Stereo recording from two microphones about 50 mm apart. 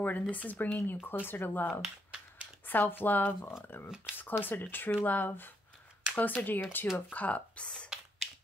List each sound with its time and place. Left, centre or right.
0.0 s speech: left
1.7 s speech: centre
2.6 s speech: left
7.1 s speech: left